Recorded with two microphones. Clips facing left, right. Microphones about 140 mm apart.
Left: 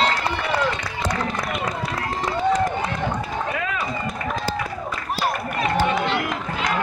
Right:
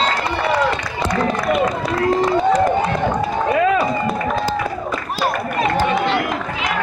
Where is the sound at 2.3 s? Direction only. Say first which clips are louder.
Right 1 dB; 70° right (ahead or behind).